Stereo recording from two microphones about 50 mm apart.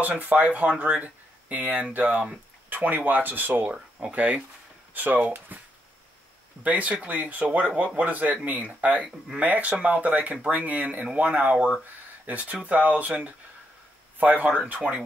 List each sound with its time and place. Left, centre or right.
0.0 s speech: right
6.6 s speech: right